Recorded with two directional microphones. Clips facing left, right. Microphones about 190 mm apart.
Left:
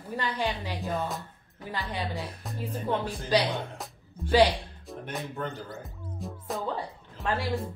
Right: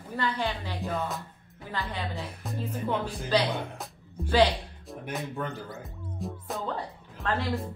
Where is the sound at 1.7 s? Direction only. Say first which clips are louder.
Left 1 dB; 15° left (ahead or behind).